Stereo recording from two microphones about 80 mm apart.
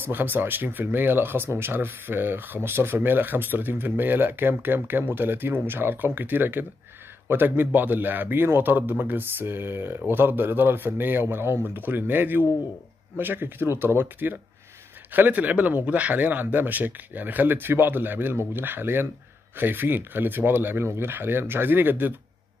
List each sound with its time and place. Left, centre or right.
0.0 s speech: right